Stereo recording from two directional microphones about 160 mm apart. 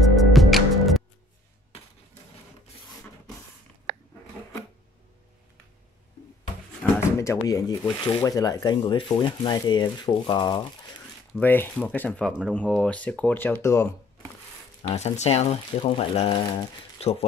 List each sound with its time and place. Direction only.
0.0 s music: centre (ahead or behind)
6.8 s drawer open or close: 15° left (ahead or behind)
7.8 s speech: 25° left (ahead or behind)
11.3 s speech: 10° left (ahead or behind)
14.9 s speech: 45° left (ahead or behind)